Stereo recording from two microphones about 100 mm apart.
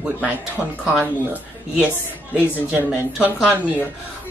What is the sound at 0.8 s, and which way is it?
Speech, 15° right (ahead or behind).